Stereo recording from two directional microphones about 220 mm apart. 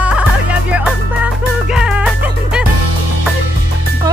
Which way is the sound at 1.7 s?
5° right (ahead or behind).